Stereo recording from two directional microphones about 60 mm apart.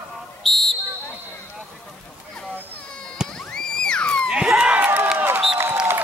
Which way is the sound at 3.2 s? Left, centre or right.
Centre.